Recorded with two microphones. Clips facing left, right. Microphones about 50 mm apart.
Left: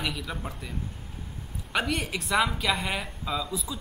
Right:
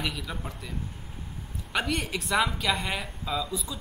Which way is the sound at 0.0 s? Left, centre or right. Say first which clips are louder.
Left 1 dB; centre.